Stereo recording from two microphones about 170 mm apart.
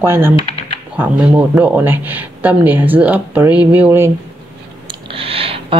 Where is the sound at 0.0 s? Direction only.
15° right (ahead or behind).